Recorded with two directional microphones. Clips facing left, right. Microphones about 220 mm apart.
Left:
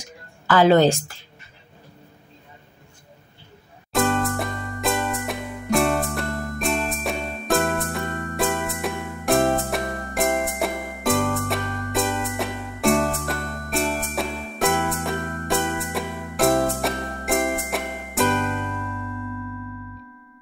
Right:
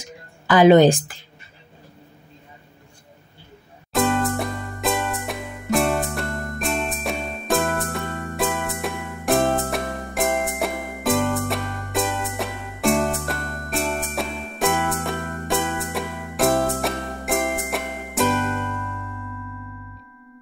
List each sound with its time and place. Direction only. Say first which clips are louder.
0.5 s a woman's voice: right 3 dB; 15° right (ahead or behind)
3.9 s music: right 1 dB; centre (ahead or behind)